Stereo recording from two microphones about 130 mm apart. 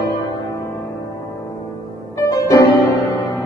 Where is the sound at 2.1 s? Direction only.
25° left (ahead or behind).